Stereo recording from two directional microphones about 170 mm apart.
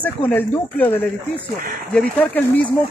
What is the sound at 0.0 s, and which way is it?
Speech, 10° left (ahead or behind).